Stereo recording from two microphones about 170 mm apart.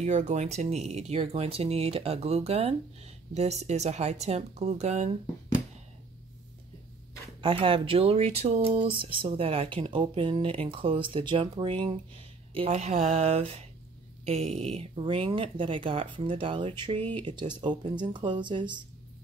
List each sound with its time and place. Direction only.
0.0 s speech: 45° right (ahead or behind)
7.4 s speech: 30° right (ahead or behind)